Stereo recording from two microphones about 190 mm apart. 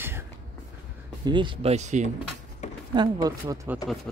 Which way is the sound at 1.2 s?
25° right (ahead or behind).